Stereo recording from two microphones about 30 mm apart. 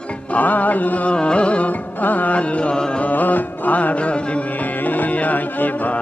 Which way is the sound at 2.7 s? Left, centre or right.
Left.